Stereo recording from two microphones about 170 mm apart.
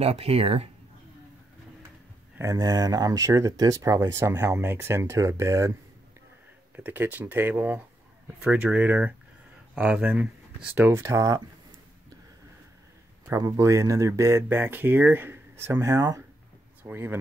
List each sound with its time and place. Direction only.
0.0 s speech: 35° right (ahead or behind)
2.3 s speech: 20° right (ahead or behind)
6.8 s speech: 10° right (ahead or behind)
13.3 s speech: 20° right (ahead or behind)